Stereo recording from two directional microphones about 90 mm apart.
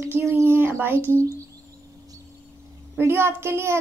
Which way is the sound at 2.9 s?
25° right (ahead or behind).